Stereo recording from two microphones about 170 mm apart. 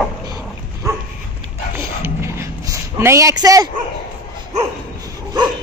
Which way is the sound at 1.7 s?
15° right (ahead or behind).